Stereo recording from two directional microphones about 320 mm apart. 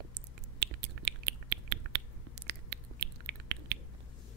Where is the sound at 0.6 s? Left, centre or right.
Right.